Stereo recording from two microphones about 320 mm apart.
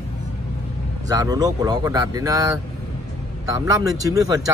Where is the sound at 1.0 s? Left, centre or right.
Centre.